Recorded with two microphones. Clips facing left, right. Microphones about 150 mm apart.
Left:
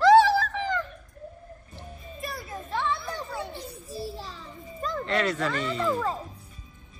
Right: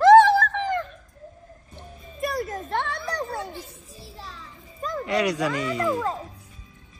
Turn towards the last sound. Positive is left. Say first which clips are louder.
# right 2 dB
turn(degrees=-15)  # may be behind; listen again after turning